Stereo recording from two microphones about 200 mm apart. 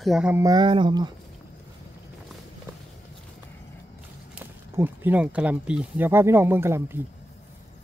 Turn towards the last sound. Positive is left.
turn(degrees=-10)  # may be behind; listen again after turning